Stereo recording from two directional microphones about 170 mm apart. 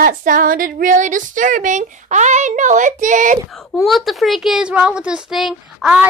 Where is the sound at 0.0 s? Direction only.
55° right (ahead or behind).